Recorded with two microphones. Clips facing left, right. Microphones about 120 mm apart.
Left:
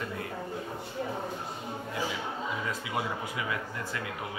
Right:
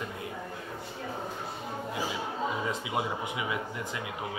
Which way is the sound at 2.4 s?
25° right (ahead or behind).